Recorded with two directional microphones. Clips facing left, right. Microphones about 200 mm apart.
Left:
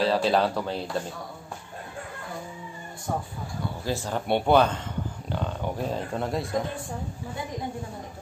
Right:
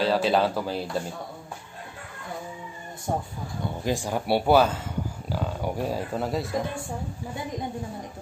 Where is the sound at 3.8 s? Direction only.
15° right (ahead or behind).